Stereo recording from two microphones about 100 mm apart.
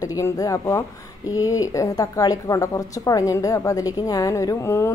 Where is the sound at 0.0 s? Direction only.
35° left (ahead or behind).